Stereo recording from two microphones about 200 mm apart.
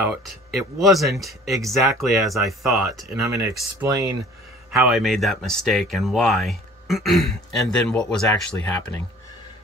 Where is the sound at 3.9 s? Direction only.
15° right (ahead or behind).